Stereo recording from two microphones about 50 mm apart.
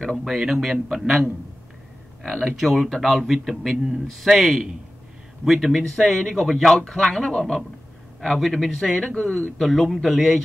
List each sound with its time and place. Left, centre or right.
0.2 s a man's voice: centre
2.6 s speech: centre
6.8 s speech: centre
9.0 s speech: centre
9.6 s speech: centre